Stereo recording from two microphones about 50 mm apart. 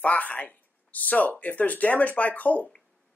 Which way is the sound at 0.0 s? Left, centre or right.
Left.